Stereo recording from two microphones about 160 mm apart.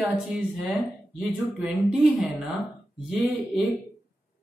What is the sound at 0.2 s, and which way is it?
Speech, centre (ahead or behind).